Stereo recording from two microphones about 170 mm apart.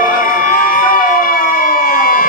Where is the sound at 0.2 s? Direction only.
55° left (ahead or behind).